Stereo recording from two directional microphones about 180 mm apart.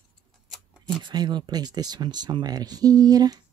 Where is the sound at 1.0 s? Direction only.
25° right (ahead or behind).